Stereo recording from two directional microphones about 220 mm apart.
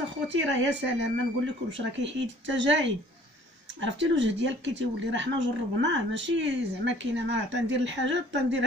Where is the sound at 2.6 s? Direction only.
55° right (ahead or behind).